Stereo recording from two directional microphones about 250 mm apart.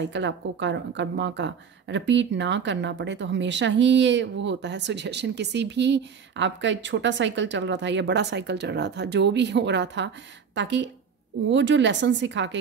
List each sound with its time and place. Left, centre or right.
0.0 s speech: right